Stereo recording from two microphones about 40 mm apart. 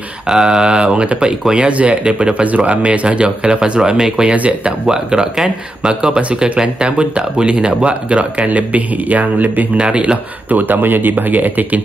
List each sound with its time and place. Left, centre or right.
0.3 s a man's voice: centre; by 2.0 s right
2.0 s speech: right
2.4 s a man's voice: right
8.5 s a man's voice: right
9.8 s speech: right
10.5 s speech: right